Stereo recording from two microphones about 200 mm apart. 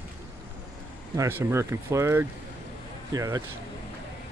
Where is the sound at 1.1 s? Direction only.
15° right (ahead or behind).